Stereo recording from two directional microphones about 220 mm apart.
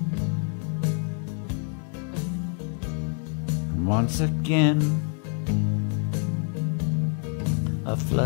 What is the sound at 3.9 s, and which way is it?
Speech, 20° right (ahead or behind).